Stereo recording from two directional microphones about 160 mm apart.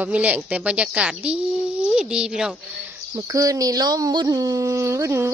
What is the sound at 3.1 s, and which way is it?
Speech, 20° right (ahead or behind).